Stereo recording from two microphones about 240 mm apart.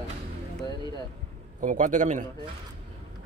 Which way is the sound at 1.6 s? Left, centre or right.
Right.